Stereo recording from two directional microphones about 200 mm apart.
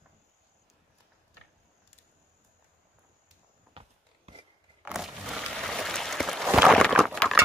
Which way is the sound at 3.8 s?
25° right (ahead or behind).